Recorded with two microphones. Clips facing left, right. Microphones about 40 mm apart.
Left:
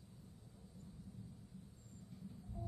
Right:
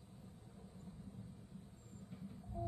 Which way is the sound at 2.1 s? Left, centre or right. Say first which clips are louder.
Right 3 dB; right.